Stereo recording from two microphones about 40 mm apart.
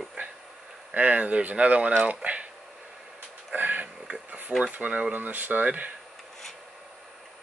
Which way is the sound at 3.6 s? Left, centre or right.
Right.